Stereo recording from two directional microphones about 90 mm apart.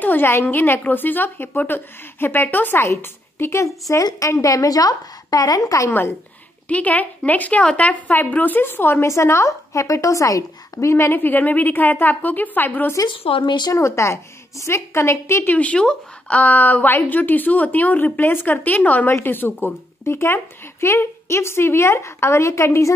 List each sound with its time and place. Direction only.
0.0 s a woman's voice: 20° left (ahead or behind); by 5.9 s 40° left (ahead or behind)
5.9 s speech: 20° left (ahead or behind)
13.1 s speech: 80° left; by 13.7 s 65° left (ahead or behind)
13.7 s a woman's voice: 35° left (ahead or behind)
15.5 s a woman's voice: 15° left (ahead or behind); by 22.8 s 30° left (ahead or behind)